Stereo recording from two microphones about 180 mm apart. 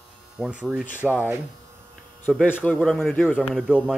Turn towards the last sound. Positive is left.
turn(degrees=-5)  # may be behind; listen again after turning